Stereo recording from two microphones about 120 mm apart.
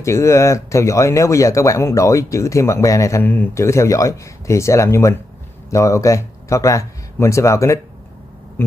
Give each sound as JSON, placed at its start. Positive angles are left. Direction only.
{"t": 0.0, "sound": "speech", "side_deg": 25}